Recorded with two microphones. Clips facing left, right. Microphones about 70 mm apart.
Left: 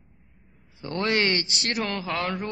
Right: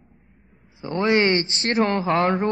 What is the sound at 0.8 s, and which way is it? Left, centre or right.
Speech, centre.